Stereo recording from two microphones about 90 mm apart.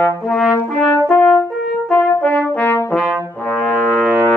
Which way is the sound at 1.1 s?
15° left (ahead or behind).